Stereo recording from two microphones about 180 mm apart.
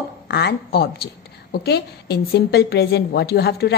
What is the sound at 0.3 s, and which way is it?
A woman's voice, 65° left (ahead or behind).